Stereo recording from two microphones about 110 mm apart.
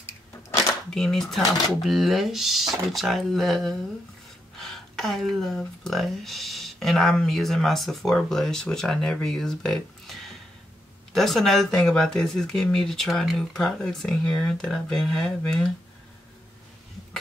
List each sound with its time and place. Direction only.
0.8 s speech: 5° left (ahead or behind)
4.6 s a sound: 5° left (ahead or behind)
5.6 s speech: centre (ahead or behind)